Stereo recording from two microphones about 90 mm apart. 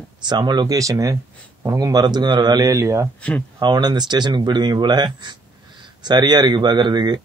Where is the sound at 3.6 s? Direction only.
50° right (ahead or behind).